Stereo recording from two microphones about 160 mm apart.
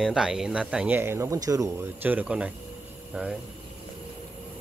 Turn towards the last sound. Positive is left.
turn(degrees=-5)  # may be behind; listen again after turning